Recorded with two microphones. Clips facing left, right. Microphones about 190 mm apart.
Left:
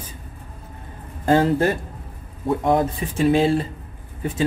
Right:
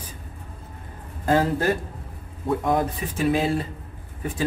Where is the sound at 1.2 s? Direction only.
30° left (ahead or behind).